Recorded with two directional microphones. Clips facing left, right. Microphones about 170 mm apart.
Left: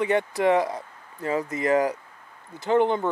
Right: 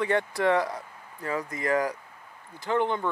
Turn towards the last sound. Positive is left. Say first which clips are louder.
# left 5 dB
turn(degrees=20)  # may be behind; listen again after turning